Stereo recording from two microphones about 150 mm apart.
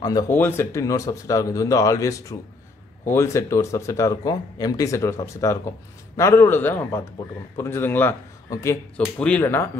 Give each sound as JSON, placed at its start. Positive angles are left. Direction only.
{"t": 0.3, "sound": "a man's voice", "side_deg": 15}
{"t": 8.9, "sound": "a man's voice", "side_deg": 10}